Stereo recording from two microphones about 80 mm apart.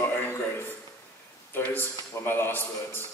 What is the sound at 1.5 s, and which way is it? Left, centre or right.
A man's voice, left.